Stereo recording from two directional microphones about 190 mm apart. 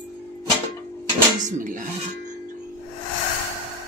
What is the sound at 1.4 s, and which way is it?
Speech, 40° right (ahead or behind).